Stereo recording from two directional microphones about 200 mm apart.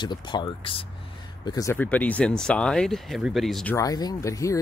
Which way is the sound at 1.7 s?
10° left (ahead or behind).